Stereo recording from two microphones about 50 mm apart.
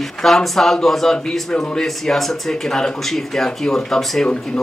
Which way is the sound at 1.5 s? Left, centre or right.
Centre.